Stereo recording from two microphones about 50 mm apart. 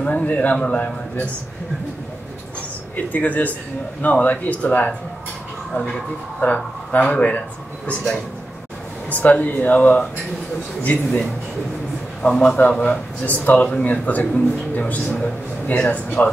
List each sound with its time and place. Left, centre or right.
0.0 s a man's voice: left
3.1 s speech: left
6.4 s a man's voice: left
9.1 s speech: left
12.2 s a man's voice: centre
13.3 s speech: left
15.0 s a man's voice: centre
15.6 s speech: left